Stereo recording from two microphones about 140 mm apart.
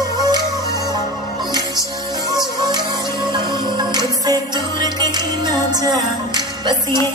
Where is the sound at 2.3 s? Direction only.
30° right (ahead or behind).